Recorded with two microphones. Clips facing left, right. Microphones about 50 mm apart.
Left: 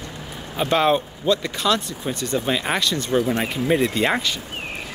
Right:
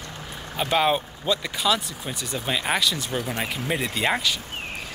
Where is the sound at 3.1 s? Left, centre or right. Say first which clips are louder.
Left 8 dB; left.